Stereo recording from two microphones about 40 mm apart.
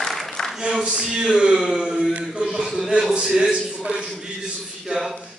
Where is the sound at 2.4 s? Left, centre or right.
Right.